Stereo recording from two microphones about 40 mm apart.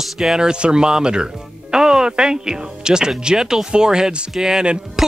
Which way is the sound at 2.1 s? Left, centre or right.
Centre.